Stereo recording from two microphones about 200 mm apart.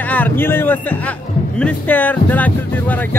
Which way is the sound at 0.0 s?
10° left (ahead or behind).